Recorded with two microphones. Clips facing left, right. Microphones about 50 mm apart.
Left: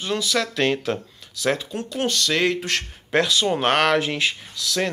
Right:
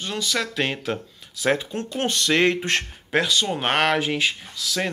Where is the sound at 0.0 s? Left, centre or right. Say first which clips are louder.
Left 3 dB; centre.